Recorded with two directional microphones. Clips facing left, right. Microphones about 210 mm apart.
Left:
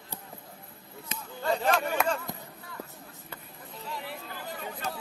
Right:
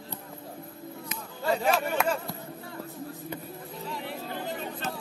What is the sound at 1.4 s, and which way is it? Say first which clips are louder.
Speech: right 1 dB; 5° right (ahead or behind).